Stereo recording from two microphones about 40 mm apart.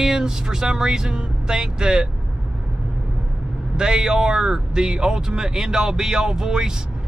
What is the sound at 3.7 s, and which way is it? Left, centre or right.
Speech, centre.